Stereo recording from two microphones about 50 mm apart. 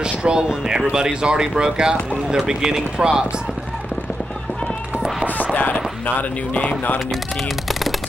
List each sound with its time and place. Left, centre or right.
0.0 s speech: centre
5.4 s a sound: left
6.5 s speech: left